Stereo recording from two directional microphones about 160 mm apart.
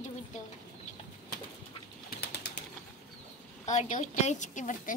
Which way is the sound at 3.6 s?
50° left (ahead or behind).